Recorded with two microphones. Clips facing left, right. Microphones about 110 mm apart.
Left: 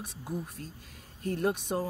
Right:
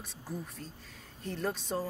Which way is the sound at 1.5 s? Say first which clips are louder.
Left 4 dB; 15° left (ahead or behind).